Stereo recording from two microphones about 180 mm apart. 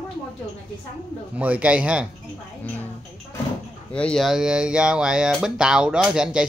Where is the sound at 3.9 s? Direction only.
5° left (ahead or behind).